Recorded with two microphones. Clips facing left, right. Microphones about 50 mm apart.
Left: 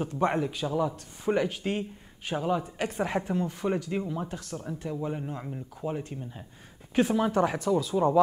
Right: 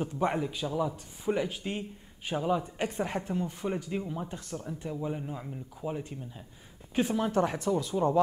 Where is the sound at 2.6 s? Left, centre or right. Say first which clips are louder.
Left 1 dB; centre.